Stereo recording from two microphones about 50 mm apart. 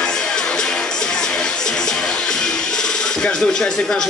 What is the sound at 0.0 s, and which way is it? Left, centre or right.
Music, centre.